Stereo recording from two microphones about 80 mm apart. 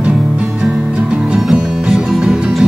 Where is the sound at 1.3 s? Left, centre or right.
Centre.